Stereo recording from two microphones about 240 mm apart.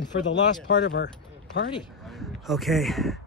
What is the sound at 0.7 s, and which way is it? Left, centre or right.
Speech, left.